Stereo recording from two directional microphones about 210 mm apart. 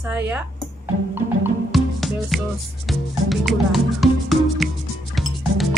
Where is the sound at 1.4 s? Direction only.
Centre (ahead or behind).